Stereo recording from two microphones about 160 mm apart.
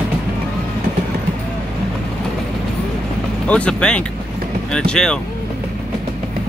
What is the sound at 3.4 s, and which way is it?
Speech, 5° left (ahead or behind).